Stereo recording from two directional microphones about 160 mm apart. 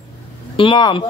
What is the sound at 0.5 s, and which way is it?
Speech, 30° left (ahead or behind).